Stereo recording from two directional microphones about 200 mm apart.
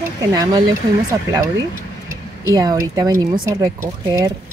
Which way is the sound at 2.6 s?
20° right (ahead or behind).